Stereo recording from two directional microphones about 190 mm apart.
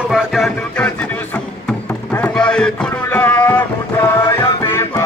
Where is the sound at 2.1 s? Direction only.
5° left (ahead or behind).